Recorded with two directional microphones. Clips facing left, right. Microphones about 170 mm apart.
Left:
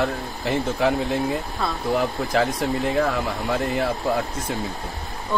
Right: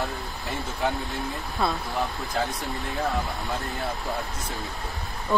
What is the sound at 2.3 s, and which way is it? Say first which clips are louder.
Speech: left 7 dB; 90° left.